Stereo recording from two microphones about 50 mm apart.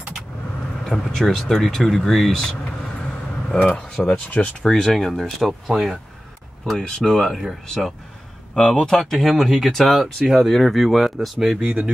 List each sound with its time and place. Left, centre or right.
0.8 s speech: centre
4.0 s speech: left
4.6 s speech: centre
6.6 s speech: centre
11.6 s speech: centre